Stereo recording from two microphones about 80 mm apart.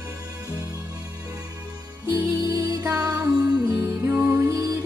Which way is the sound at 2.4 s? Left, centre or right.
Right.